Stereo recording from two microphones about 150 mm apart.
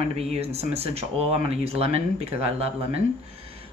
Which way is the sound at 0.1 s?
45° right (ahead or behind).